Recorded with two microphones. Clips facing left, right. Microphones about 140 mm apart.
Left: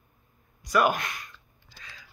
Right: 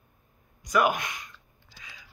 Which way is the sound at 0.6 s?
15° right (ahead or behind).